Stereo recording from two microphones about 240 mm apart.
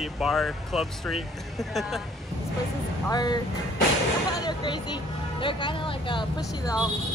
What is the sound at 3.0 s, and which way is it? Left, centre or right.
Speech, centre.